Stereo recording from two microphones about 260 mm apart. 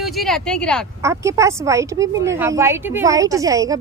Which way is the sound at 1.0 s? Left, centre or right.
Centre.